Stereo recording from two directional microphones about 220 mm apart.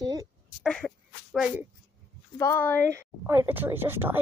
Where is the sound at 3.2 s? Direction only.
10° right (ahead or behind).